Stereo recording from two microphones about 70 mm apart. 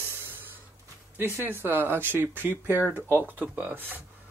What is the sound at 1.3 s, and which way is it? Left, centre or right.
Speech, right.